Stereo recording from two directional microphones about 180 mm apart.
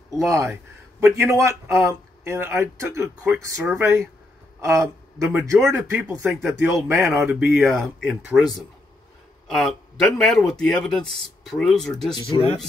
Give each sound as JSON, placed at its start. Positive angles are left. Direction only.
{"t": 0.2, "sound": "speech", "side_deg": -15}